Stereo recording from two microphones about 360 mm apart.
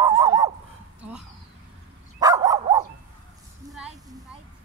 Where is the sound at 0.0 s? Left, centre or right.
Centre.